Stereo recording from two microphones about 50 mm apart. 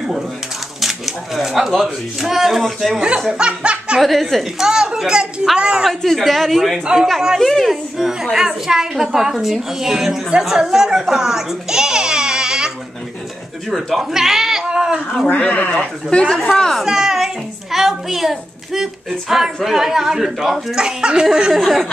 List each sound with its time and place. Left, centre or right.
0.7 s speech: centre
3.3 s snicker: right
4.0 s a child's voice: centre
5.9 s a child's voice: centre
13.7 s cat: centre
15.2 s speech: left
15.8 s speech: centre
16.3 s a child's voice: centre